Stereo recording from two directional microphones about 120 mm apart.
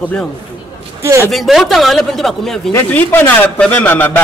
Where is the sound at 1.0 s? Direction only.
25° right (ahead or behind).